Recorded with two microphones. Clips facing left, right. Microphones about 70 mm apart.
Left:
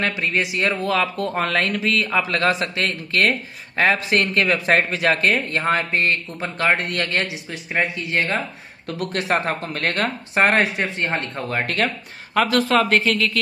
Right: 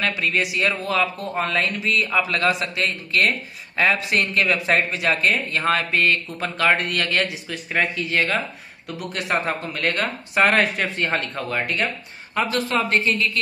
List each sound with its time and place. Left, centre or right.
0.2 s speech: left
5.6 s speech: left
6.4 s speech: centre
8.9 s speech: left
10.6 s speech: centre
11.6 s speech: left
12.4 s speech: left